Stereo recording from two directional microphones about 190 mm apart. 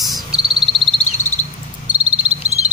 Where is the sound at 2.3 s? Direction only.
35° right (ahead or behind).